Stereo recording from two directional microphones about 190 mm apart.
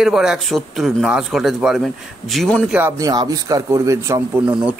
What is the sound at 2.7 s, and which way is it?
A man's voice, 15° right (ahead or behind).